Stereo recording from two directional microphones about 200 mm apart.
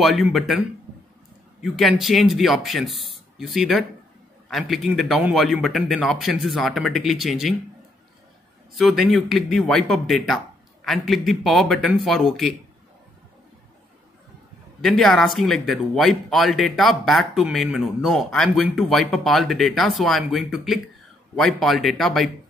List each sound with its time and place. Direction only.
0.0 s speech: centre (ahead or behind)
1.6 s speech: centre (ahead or behind)
8.7 s speech: centre (ahead or behind)
14.8 s speech: centre (ahead or behind)